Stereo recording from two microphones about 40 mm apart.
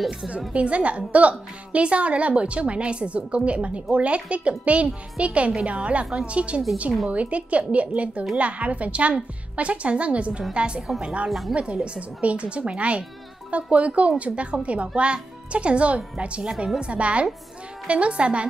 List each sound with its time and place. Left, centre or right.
0.5 s a woman's voice: right
11.2 s speech: centre
11.5 s a woman's voice: right
16.8 s a woman's voice: right